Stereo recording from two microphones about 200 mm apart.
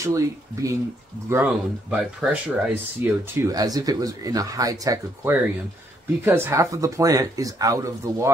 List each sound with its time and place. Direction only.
0.0 s speech: 15° right (ahead or behind)